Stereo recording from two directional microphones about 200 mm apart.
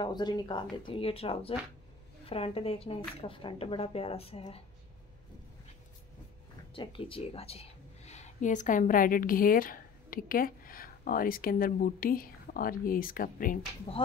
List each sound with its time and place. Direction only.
0.0 s speech: 20° left (ahead or behind)
6.7 s speech: 25° left (ahead or behind); by 13.6 s 45° left (ahead or behind)
13.9 s speech: 30° left (ahead or behind)